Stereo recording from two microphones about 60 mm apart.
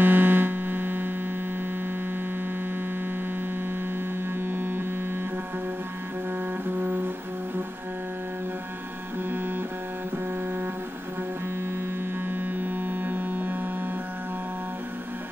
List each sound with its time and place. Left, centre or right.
0.0 s a sound: right
4.5 s mains hum: right
6.8 s music: right
12.3 s music: right